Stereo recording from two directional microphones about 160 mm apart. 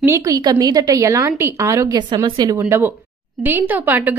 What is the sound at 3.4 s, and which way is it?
Speech, 10° right (ahead or behind).